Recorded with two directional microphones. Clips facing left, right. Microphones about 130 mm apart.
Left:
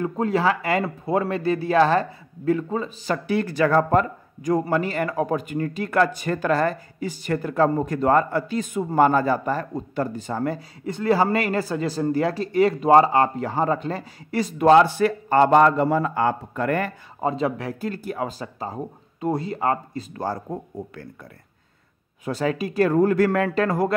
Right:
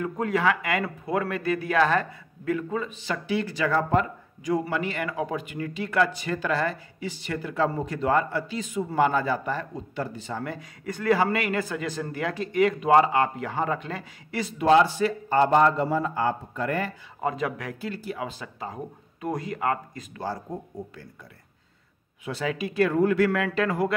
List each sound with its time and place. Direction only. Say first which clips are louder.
0.0 s speech: left 3 dB; 30° left (ahead or behind)
10.8 s speech: left 2 dB; 25° left (ahead or behind); by 16.9 s 60° left (ahead or behind)
17.2 s speech: left 4 dB; 30° left (ahead or behind)
17.7 s speech: left 5 dB; 45° left (ahead or behind); by 20.1 s 30° left (ahead or behind)
20.2 s speech: left 4 dB; 50° left (ahead or behind)
22.2 s speech: left 5 dB; 40° left (ahead or behind)